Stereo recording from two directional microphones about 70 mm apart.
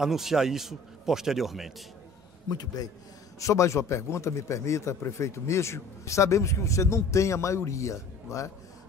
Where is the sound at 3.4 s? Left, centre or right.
Left.